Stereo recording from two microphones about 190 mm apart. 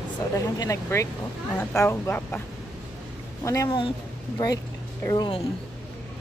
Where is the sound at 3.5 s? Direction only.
20° left (ahead or behind).